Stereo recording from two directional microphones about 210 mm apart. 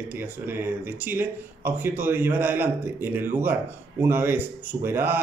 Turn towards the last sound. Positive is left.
turn(degrees=-10)  # may be behind; listen again after turning